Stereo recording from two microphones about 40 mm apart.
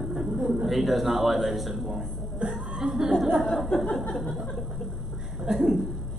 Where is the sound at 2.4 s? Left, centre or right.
Right.